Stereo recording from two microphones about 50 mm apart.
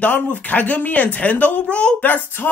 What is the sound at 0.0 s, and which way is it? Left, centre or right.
Speech, left.